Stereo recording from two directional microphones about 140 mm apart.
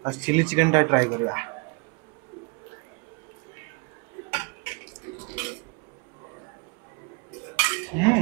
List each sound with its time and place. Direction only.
0.0 s speech: 20° right (ahead or behind)
4.3 s dishes: 15° right (ahead or behind)
5.3 s cutlery: 15° right (ahead or behind)
7.5 s cutlery: 15° right (ahead or behind)